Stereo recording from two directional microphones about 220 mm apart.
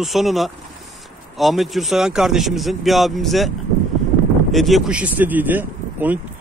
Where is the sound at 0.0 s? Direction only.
Centre (ahead or behind).